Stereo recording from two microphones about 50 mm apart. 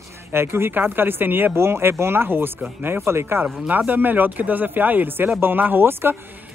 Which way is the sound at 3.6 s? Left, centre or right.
Right.